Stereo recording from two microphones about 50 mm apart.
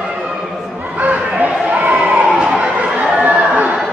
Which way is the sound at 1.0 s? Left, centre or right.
Right.